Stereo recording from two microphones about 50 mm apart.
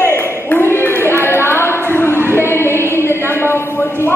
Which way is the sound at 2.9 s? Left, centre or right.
Left.